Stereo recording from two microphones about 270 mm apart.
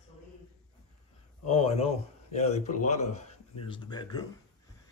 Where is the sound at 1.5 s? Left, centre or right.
Left.